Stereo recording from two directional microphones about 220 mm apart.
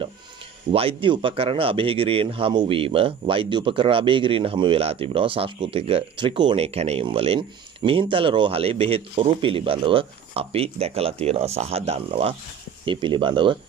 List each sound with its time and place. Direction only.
0.7 s speech: 25° right (ahead or behind)